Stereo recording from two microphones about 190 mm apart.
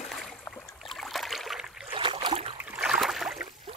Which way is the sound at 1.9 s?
30° right (ahead or behind).